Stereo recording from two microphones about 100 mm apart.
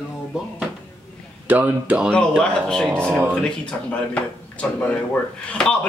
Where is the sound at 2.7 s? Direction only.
5° left (ahead or behind).